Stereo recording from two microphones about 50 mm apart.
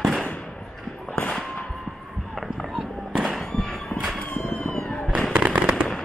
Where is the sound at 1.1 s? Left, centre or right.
Left.